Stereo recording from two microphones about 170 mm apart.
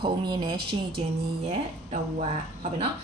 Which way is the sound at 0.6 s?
70° right (ahead or behind).